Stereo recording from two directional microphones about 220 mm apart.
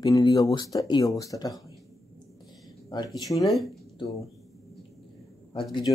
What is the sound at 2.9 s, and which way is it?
Speech, 20° left (ahead or behind).